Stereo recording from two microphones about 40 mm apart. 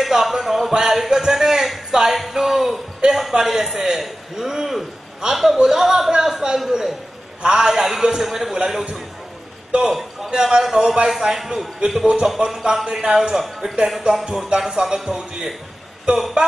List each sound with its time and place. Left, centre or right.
0.0 s a sound: centre
7.4 s a man's voice: centre
13.4 s a man's voice: centre; by 16.2 s right